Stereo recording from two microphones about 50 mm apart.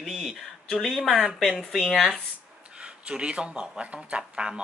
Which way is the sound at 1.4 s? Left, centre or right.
Centre.